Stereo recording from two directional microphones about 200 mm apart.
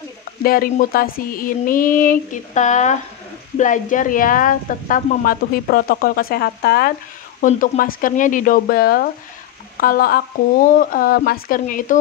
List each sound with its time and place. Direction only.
0.4 s a woman's voice: 45° left (ahead or behind)
7.4 s a woman's voice: 40° left (ahead or behind)